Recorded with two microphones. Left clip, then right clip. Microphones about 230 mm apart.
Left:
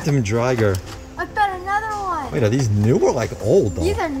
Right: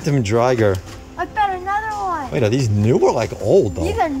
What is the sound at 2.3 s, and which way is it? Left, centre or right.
Speech, centre.